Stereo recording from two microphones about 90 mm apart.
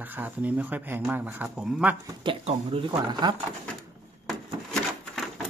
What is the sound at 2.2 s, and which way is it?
Speech, 60° right (ahead or behind).